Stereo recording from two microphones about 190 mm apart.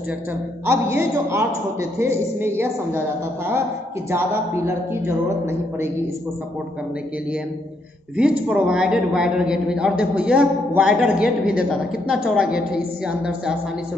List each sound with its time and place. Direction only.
0.7 s a man's voice: 15° right (ahead or behind)
4.6 s a man's voice: 15° right (ahead or behind)
8.2 s a man's voice: 5° right (ahead or behind)